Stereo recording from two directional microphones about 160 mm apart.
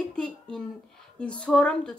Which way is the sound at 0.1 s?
5° left (ahead or behind).